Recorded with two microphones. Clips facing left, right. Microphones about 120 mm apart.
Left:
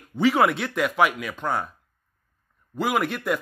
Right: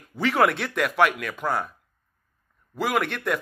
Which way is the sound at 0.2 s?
Centre (ahead or behind).